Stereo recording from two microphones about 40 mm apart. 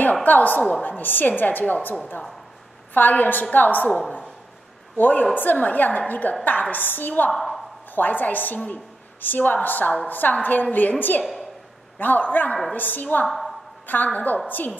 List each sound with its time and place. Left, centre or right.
0.2 s a woman's voice: left
4.9 s a woman's voice: left
7.3 s a sound: centre
7.9 s a woman's voice: left
13.3 s a sound: centre
13.8 s a woman's voice: left